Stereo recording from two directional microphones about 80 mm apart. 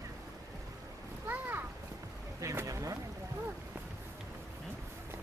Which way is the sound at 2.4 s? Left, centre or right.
Right.